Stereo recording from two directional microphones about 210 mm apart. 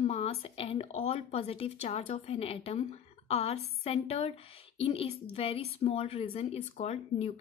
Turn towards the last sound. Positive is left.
turn(degrees=30)  # may be behind; listen again after turning